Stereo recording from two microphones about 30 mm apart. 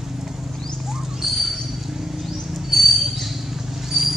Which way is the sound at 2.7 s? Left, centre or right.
Centre.